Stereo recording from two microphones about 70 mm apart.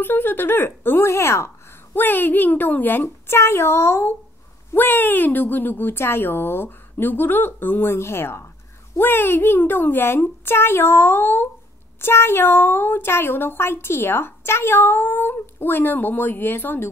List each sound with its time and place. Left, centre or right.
0.0 s speech: left
2.0 s speech: left